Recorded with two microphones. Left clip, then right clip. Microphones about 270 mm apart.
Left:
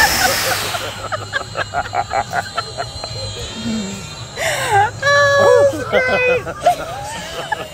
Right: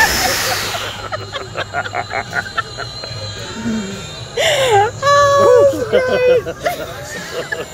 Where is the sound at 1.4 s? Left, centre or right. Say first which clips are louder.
Left 2 dB; left.